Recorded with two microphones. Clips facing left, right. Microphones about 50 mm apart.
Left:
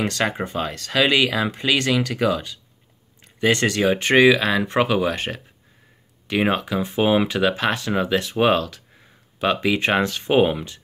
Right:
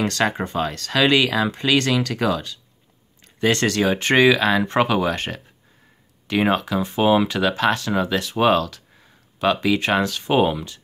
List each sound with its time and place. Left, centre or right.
0.0 s speech: centre